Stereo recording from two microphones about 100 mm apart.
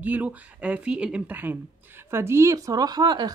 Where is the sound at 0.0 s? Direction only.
15° right (ahead or behind).